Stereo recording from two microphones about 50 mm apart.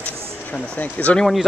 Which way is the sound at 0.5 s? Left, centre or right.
Left.